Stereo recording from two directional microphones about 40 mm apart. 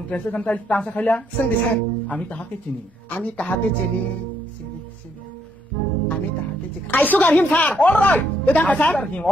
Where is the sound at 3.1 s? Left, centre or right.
Left.